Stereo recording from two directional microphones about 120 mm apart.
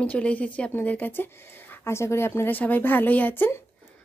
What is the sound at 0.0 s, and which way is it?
A woman's voice, 10° left (ahead or behind).